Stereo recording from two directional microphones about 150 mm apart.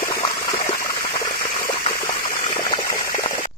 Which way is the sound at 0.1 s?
20° left (ahead or behind).